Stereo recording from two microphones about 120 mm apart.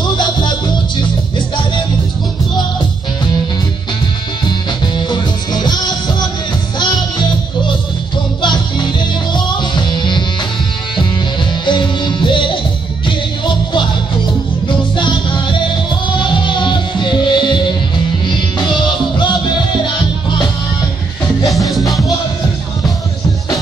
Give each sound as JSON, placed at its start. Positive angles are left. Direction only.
{"t": 0.0, "sound": "music", "side_deg": 40}
{"t": 4.5, "sound": "music", "side_deg": 40}
{"t": 8.4, "sound": "music", "side_deg": 40}
{"t": 11.6, "sound": "music", "side_deg": 40}
{"t": 21.5, "sound": "music", "side_deg": 0}